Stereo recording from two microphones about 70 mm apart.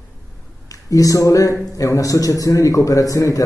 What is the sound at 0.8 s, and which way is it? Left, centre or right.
A man's voice, left.